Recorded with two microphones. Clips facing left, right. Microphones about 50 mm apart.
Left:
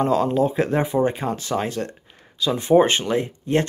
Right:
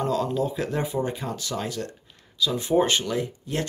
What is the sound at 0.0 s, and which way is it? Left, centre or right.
Speech, left.